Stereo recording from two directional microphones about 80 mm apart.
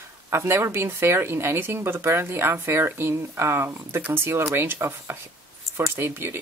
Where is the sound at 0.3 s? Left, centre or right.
Right.